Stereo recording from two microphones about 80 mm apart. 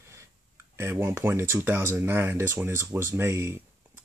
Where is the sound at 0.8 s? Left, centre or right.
Right.